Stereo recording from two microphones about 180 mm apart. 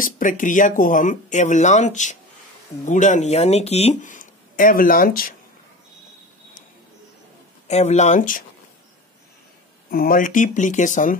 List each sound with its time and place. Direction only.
0.0 s speech: 45° left (ahead or behind)
7.6 s speech: 40° left (ahead or behind)
9.8 s speech: 55° left (ahead or behind)